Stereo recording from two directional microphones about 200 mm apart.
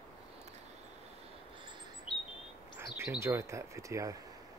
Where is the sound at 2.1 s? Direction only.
25° left (ahead or behind).